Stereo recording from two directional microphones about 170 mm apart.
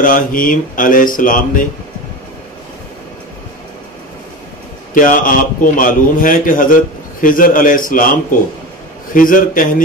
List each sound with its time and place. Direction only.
0.0 s a man's voice: 55° left (ahead or behind)
4.9 s a man's voice: 55° left (ahead or behind)
9.1 s a man's voice: 55° left (ahead or behind)